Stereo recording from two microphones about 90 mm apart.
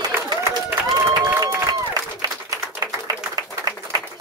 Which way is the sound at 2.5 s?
45° right (ahead or behind).